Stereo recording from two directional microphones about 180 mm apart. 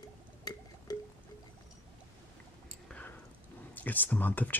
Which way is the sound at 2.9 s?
10° left (ahead or behind).